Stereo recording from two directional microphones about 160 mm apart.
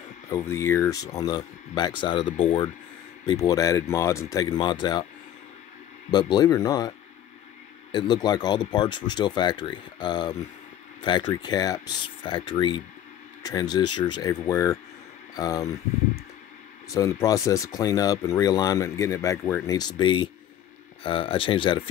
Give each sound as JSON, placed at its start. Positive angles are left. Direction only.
{"t": 0.3, "sound": "speech", "side_deg": 20}
{"t": 3.3, "sound": "speech", "side_deg": 20}
{"t": 6.0, "sound": "speech", "side_deg": 25}
{"t": 7.9, "sound": "speech", "side_deg": 25}
{"t": 16.9, "sound": "speech", "side_deg": 20}